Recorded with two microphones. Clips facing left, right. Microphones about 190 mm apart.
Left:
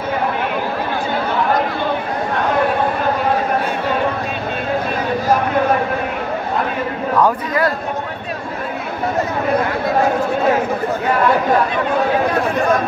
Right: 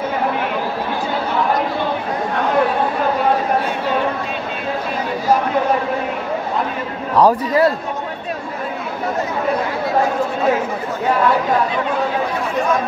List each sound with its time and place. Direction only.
7.2 s a man's voice: 30° right (ahead or behind)